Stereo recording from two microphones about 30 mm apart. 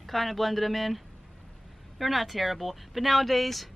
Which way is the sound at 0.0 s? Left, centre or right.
Centre.